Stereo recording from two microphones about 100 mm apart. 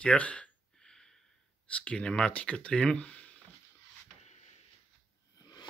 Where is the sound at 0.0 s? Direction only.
10° left (ahead or behind).